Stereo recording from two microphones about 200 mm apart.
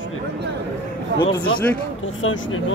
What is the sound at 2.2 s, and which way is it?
Speech, 80° left.